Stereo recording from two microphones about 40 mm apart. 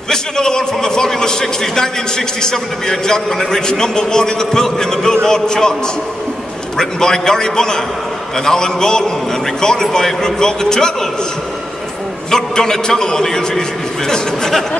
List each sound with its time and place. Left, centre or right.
0.1 s a man's voice: centre
6.8 s a man's voice: centre
12.3 s a man's voice: centre